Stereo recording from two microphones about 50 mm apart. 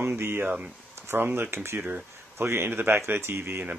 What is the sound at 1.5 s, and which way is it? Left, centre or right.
Speech, right.